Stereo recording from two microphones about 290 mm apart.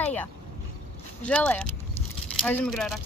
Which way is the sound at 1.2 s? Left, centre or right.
Centre.